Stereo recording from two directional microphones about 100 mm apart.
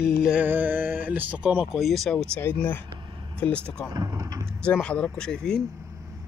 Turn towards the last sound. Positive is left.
turn(degrees=5)  # may be behind; listen again after turning